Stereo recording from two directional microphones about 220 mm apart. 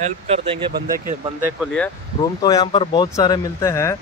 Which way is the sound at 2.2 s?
15° left (ahead or behind).